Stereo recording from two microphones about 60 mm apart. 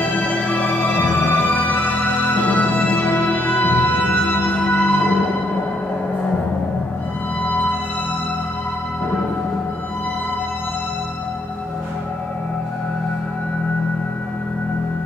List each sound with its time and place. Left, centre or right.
0.0 s music: left